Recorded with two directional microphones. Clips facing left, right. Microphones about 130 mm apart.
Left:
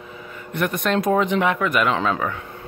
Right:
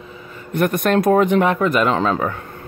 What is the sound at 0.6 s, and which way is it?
Speech, 50° right (ahead or behind).